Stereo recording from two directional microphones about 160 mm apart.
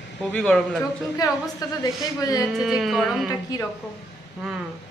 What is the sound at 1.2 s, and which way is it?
A woman's voice, 20° left (ahead or behind).